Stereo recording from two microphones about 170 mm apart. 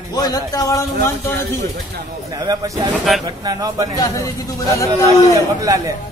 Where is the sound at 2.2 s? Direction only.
20° right (ahead or behind).